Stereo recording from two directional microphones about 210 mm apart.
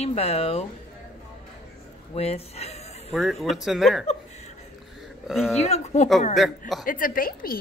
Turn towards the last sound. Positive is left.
turn(degrees=45)  # may be behind; listen again after turning